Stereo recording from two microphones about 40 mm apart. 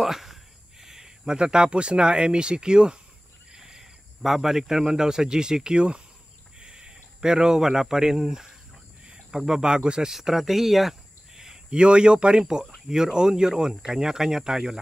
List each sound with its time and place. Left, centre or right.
0.0 s speech: centre
9.0 s cricket: right
9.5 s speech: centre
10.1 s speech: centre
11.7 s speech: right